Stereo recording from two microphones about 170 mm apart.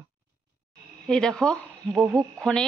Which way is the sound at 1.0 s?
5° left (ahead or behind).